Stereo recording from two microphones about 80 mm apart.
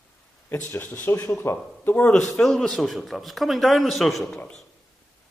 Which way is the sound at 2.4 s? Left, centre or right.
Centre.